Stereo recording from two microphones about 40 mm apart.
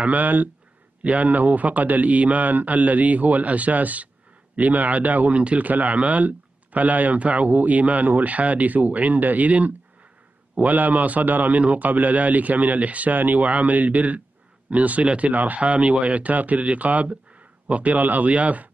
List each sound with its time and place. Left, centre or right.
0.0 s a man's voice: right